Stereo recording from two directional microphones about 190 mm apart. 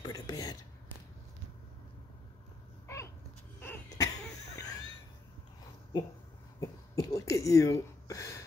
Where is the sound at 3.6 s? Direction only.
15° left (ahead or behind).